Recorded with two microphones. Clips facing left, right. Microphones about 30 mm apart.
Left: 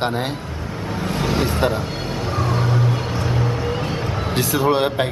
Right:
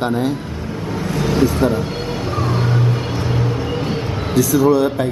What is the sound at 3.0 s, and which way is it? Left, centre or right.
Vehicle, centre.